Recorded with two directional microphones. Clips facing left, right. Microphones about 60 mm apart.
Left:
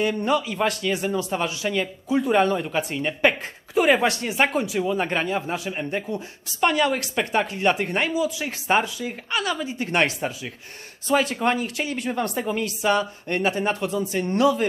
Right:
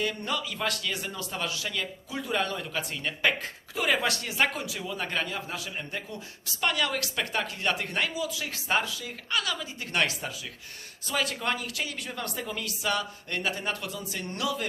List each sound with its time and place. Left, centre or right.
0.0 s speech: left